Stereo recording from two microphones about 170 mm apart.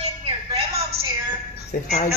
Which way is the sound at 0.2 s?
35° right (ahead or behind).